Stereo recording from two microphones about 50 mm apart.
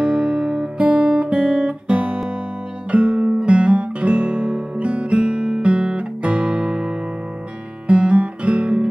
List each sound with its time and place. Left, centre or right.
0.0 s music: right
0.8 s guitar: right